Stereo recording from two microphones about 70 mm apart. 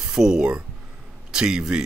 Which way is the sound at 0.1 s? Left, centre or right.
Centre.